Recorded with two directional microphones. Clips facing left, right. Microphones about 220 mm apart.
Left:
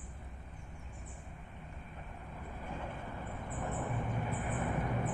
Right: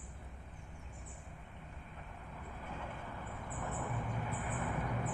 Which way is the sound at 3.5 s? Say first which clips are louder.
Left 3 dB; 30° left (ahead or behind).